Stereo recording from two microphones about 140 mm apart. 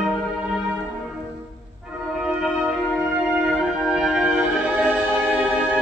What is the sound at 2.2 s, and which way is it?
Music, 5° right (ahead or behind).